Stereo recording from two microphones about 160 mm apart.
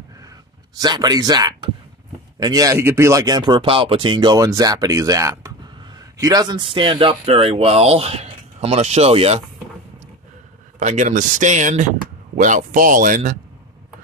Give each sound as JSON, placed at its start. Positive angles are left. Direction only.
{"t": 0.7, "sound": "speech", "side_deg": -25}
{"t": 10.8, "sound": "speech", "side_deg": -50}